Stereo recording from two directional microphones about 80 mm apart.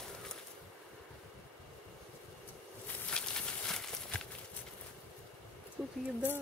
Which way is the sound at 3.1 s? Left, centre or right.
Centre.